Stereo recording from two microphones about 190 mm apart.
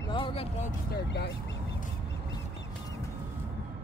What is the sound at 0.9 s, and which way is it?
Speech, 60° left (ahead or behind).